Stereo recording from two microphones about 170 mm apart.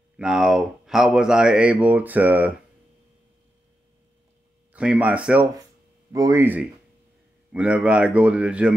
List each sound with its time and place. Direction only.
0.2 s speech: 5° right (ahead or behind)
4.7 s a man's voice: 10° right (ahead or behind)